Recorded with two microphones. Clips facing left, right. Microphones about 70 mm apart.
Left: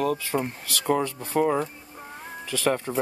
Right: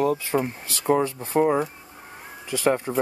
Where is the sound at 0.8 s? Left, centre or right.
Centre.